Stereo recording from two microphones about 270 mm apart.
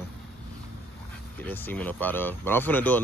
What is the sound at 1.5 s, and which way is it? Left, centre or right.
Speech, centre.